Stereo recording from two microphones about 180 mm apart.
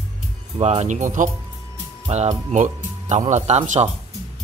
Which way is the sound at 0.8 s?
45° right (ahead or behind).